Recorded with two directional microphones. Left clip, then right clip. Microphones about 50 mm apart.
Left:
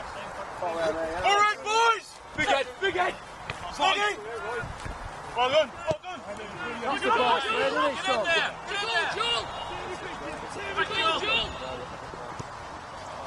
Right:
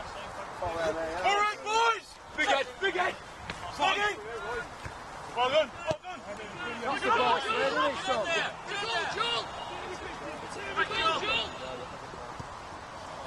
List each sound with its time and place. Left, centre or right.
0.7 s speech: right
1.2 s speech: centre
1.7 s a sound: centre
2.3 s a man's voice: right
3.7 s speech: centre
5.3 s a man's voice: centre
5.9 s a sound: right
6.6 s speech: right
8.0 s speech: left
9.1 s speech: right
10.6 s a man's voice: right